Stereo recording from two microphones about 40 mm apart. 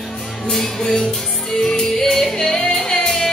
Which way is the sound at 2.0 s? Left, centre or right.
Centre.